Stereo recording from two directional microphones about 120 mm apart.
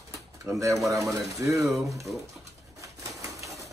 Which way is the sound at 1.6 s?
Centre (ahead or behind).